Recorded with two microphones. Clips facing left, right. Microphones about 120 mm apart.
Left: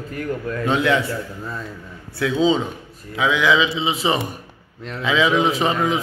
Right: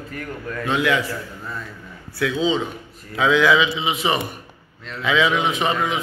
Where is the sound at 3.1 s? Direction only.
15° left (ahead or behind).